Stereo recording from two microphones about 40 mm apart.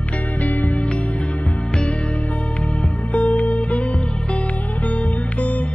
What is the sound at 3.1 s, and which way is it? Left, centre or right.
Music, left.